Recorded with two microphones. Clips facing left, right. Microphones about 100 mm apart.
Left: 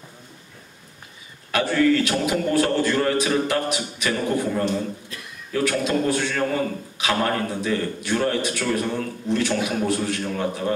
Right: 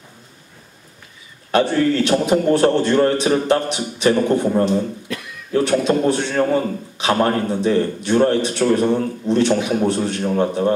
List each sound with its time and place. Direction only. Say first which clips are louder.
1.5 s a man's voice: right 3 dB; 30° right (ahead or behind)
2.5 s a man's voice: right 4 dB; 25° right (ahead or behind)
5.1 s a sound: right 11 dB; 70° right (ahead or behind)
5.5 s a man's voice: right 6 dB; 25° right (ahead or behind)